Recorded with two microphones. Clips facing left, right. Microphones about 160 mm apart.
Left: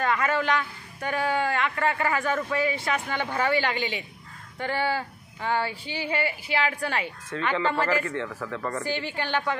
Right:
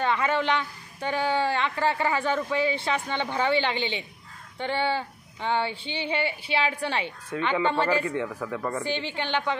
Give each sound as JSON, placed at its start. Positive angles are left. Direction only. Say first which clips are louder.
{"t": 0.0, "sound": "speech", "louder": "even", "side_deg": -25}
{"t": 7.2, "sound": "speech", "louder": "right 1 dB", "side_deg": -15}
{"t": 7.7, "sound": "speech", "louder": "right 1 dB", "side_deg": -25}
{"t": 8.0, "sound": "speech", "louder": "right 2 dB", "side_deg": -15}
{"t": 8.8, "sound": "speech", "louder": "even", "side_deg": -25}